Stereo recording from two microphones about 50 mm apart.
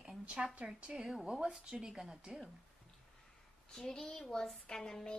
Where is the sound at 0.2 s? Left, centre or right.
Centre.